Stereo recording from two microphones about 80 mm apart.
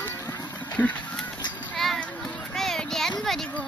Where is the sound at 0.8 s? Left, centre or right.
Centre.